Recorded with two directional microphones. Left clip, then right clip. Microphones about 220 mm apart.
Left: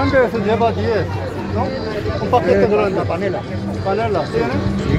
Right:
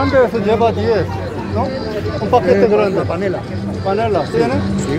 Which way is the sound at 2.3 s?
25° right (ahead or behind).